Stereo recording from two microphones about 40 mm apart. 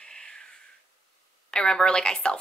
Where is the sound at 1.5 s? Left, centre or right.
Centre.